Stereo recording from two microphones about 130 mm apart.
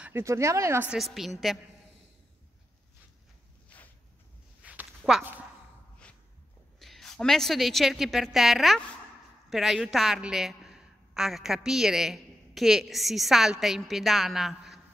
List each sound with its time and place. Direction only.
0.0 s speech: 20° right (ahead or behind)
0.9 s a woman's voice: centre (ahead or behind)
4.6 s a sound: 10° right (ahead or behind)
6.8 s a woman's voice: centre (ahead or behind)